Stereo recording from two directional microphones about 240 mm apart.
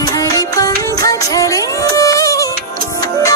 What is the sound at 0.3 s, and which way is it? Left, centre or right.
Music, centre.